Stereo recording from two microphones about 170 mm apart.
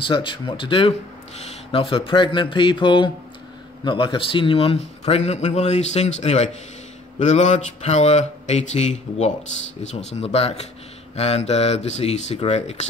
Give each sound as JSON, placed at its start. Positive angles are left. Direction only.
{"t": 0.0, "sound": "a man's voice", "side_deg": 30}
{"t": 9.9, "sound": "a man's voice", "side_deg": 40}